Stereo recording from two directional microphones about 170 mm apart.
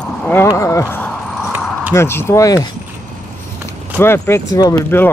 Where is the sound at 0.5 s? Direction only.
15° left (ahead or behind).